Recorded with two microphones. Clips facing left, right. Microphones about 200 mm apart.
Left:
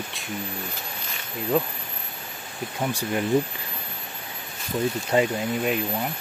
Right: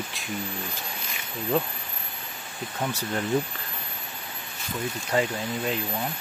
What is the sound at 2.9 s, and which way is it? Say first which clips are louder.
Speech: left 6 dB; 15° left (ahead or behind).